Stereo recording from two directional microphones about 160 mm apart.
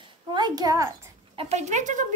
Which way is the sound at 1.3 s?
45° right (ahead or behind).